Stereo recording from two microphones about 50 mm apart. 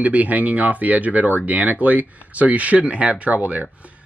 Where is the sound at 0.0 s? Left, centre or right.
Right.